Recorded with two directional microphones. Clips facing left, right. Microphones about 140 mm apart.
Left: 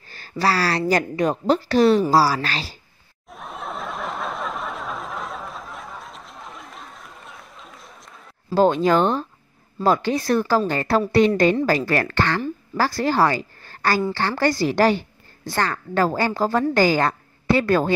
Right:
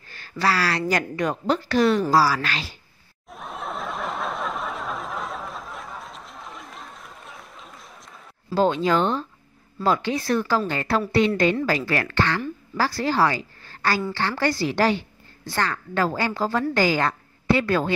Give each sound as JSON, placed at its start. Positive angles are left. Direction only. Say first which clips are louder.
{"t": 0.1, "sound": "a woman's voice", "louder": "left 2 dB", "side_deg": 35}
{"t": 3.3, "sound": "a sound", "louder": "even", "side_deg": 0}
{"t": 8.5, "sound": "a woman's voice", "louder": "left 3 dB", "side_deg": 45}